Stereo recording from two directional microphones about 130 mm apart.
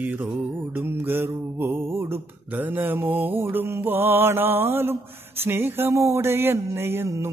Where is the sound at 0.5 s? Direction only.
15° right (ahead or behind).